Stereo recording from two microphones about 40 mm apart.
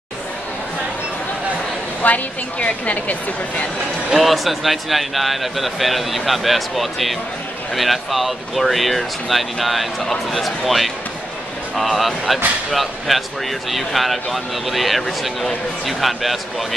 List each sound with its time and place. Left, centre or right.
2.0 s a woman's voice: left
4.2 s speech: centre